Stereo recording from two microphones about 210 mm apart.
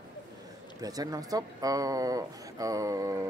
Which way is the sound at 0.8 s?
15° right (ahead or behind).